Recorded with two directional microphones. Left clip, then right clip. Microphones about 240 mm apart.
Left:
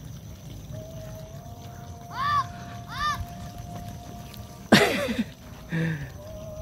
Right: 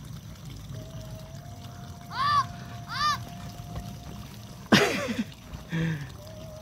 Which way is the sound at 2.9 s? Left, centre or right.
Right.